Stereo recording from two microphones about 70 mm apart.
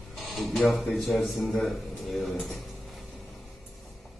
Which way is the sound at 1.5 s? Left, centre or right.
Centre.